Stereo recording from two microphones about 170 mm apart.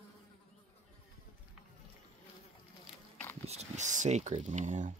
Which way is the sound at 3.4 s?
40° right (ahead or behind).